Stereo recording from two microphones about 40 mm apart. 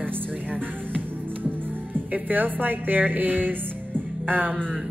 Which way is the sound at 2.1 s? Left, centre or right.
Right.